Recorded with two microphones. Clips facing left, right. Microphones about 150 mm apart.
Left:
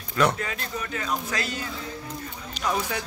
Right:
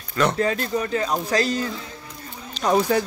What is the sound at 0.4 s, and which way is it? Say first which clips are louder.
Speech: right 10 dB; 35° right (ahead or behind).